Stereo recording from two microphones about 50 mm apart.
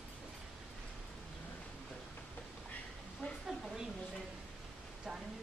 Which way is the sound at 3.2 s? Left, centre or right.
Left.